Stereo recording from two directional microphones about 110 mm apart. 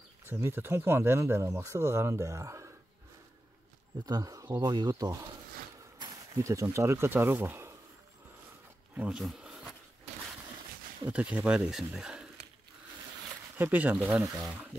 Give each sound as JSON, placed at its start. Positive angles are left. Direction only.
{"t": 0.3, "sound": "speech", "side_deg": -20}
{"t": 4.0, "sound": "speech", "side_deg": -35}
{"t": 6.3, "sound": "speech", "side_deg": -30}
{"t": 8.9, "sound": "a sound", "side_deg": -10}
{"t": 11.1, "sound": "speech", "side_deg": -10}
{"t": 13.6, "sound": "speech", "side_deg": -15}
{"t": 13.9, "sound": "speech", "side_deg": -5}